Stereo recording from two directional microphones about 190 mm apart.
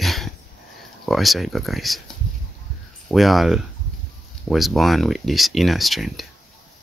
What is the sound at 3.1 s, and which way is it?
Speech, centre (ahead or behind).